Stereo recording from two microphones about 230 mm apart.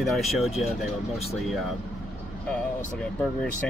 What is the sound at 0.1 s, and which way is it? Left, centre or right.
Speech, centre.